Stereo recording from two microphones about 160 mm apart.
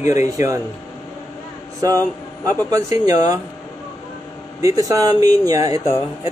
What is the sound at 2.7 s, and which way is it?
Speech, 20° right (ahead or behind).